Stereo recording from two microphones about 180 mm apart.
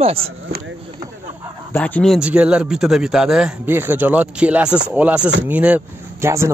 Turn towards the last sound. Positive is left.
turn(degrees=-15)  # may be behind; listen again after turning